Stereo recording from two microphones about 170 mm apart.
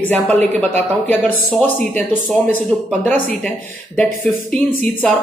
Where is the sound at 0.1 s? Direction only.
10° left (ahead or behind).